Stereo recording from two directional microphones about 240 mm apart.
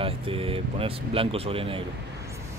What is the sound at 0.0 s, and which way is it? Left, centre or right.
Speech, right.